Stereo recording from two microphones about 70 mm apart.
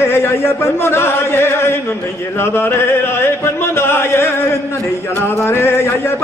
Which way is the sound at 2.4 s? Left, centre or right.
Left.